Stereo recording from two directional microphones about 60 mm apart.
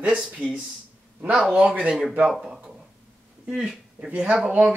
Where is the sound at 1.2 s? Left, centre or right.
Centre.